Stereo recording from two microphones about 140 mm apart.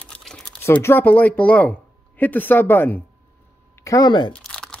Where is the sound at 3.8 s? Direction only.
30° left (ahead or behind).